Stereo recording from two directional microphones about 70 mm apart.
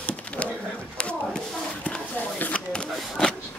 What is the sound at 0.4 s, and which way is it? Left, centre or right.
Pigeon, centre.